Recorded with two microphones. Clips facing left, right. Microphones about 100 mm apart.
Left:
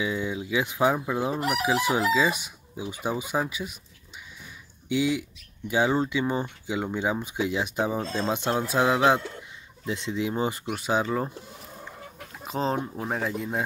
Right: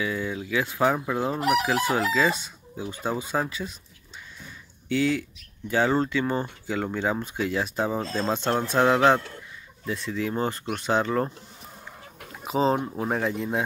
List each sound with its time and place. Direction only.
0.0 s chicken: 20° left (ahead or behind)
4.8 s speech: 15° left (ahead or behind)
5.7 s chicken: 15° left (ahead or behind)
9.8 s chicken: 20° left (ahead or behind)
12.3 s speech: centre (ahead or behind)